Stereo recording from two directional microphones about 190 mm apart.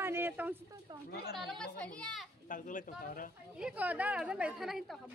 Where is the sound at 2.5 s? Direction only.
45° left (ahead or behind).